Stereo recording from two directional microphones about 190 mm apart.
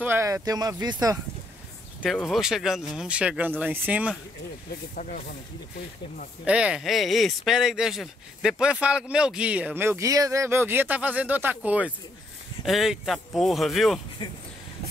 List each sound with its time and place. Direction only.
0.0 s speech: 15° right (ahead or behind)
2.0 s speech: centre (ahead or behind)
6.4 s speech: 5° right (ahead or behind)